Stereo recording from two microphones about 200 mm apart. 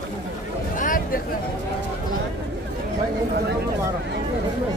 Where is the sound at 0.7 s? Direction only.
45° left (ahead or behind).